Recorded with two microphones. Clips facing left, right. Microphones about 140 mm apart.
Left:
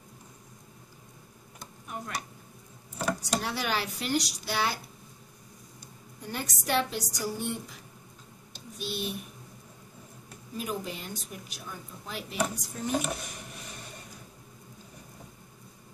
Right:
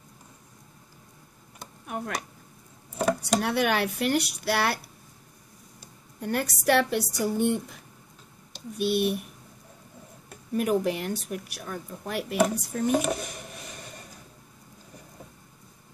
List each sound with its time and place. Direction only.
1.9 s speech: 55° right (ahead or behind)
6.2 s speech: 65° right (ahead or behind)
10.5 s speech: 65° right (ahead or behind)